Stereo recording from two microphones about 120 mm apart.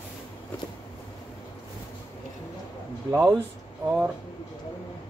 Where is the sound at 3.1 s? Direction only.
25° right (ahead or behind).